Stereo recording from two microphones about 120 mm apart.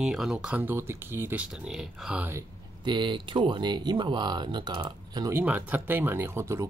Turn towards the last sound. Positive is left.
turn(degrees=-25)  # may be behind; listen again after turning